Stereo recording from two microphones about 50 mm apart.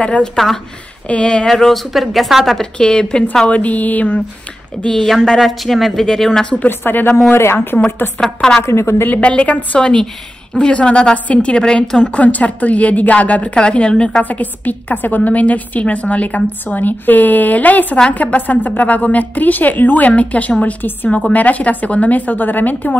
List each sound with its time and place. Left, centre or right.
0.4 s speech: centre
1.0 s a woman's voice: left
1.5 s speech: centre
2.6 s speech: centre
3.4 s a woman's voice: left
4.8 s speech: centre
5.4 s speech: centre
6.7 s speech: left
7.7 s speech: centre
8.6 s a woman's voice: left
9.0 s a woman's voice: left
9.8 s a woman's voice: centre
12.2 s a woman's voice: left
14.2 s a woman's voice: left